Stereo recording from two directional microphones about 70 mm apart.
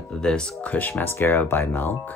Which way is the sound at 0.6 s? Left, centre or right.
Left.